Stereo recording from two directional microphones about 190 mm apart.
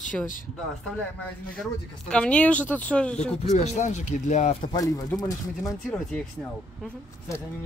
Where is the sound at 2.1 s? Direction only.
5° left (ahead or behind).